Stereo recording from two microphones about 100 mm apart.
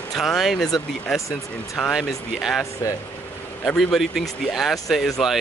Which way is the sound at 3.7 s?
Centre (ahead or behind).